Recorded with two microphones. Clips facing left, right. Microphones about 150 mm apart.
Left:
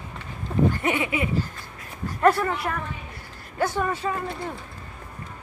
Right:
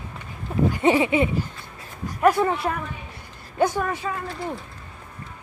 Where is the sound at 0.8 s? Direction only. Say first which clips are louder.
Right 7 dB; 30° right (ahead or behind).